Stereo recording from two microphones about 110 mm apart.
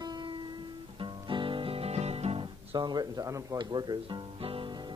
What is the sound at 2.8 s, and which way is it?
Speech, 40° right (ahead or behind).